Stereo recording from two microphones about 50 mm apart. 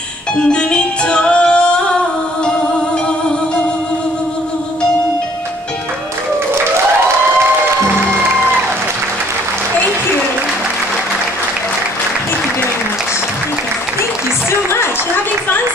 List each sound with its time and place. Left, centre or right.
0.4 s music: centre
14.5 s music: left